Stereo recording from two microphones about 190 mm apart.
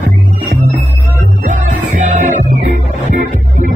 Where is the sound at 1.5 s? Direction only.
40° right (ahead or behind).